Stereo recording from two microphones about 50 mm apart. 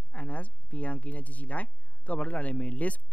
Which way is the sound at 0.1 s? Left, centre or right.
Left.